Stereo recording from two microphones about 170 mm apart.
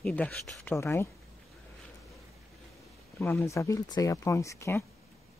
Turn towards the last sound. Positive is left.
turn(degrees=15)  # may be behind; listen again after turning